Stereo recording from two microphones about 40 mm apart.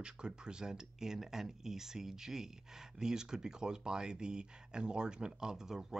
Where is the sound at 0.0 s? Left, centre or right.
Right.